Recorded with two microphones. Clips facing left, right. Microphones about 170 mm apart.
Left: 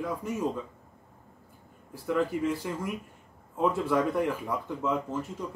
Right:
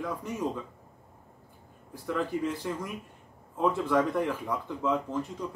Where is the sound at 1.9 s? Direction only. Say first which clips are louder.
Left 3 dB; 5° left (ahead or behind).